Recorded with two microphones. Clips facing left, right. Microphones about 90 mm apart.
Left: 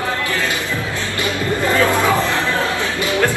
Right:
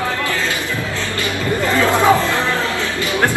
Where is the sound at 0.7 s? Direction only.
20° left (ahead or behind).